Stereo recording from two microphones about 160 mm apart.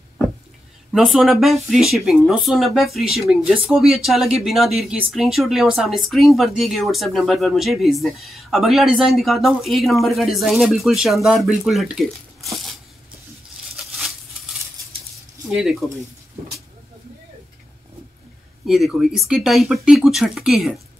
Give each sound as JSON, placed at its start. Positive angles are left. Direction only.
{"t": 0.9, "sound": "speech", "side_deg": 0}
{"t": 15.8, "sound": "speech", "side_deg": 0}
{"t": 18.7, "sound": "speech", "side_deg": 0}